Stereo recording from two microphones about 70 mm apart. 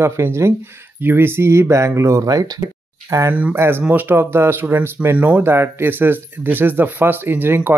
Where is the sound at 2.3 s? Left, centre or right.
Right.